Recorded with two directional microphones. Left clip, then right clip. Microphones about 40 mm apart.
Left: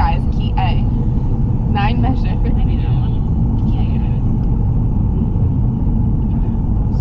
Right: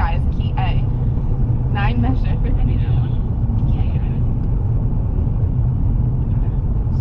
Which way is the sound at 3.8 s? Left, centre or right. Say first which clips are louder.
Left 5 dB; right.